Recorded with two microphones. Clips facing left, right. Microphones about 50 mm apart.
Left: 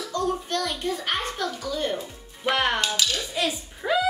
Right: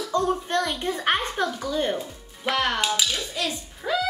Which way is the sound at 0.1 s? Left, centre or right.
Right.